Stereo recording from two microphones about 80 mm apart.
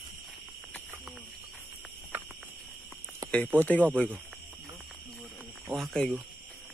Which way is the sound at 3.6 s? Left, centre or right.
Left.